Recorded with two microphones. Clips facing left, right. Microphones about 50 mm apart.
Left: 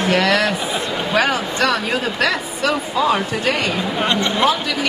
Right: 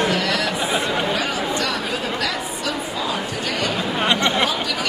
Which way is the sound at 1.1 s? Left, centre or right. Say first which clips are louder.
Left 4 dB; left.